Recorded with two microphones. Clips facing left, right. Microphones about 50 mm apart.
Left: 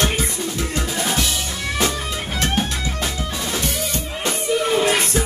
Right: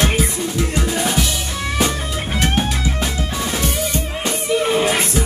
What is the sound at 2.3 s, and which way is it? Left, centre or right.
Music, centre.